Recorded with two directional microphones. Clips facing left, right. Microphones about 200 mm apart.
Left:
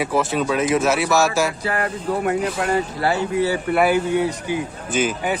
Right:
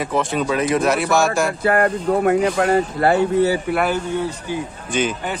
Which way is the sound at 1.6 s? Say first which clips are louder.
Right 7 dB; 50° right (ahead or behind).